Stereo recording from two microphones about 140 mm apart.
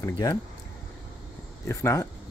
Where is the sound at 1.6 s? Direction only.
20° left (ahead or behind).